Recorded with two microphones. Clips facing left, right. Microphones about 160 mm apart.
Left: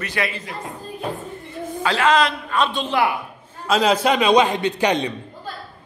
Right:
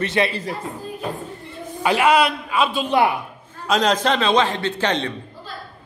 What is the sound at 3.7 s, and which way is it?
A man's voice, 5° left (ahead or behind).